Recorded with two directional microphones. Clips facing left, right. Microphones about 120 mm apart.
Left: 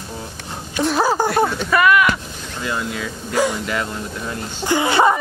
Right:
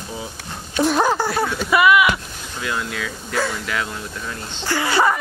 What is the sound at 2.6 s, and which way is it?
Speech, 5° left (ahead or behind).